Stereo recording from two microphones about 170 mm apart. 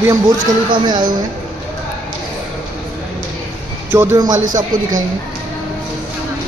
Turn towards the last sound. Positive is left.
turn(degrees=-50)  # may be behind; listen again after turning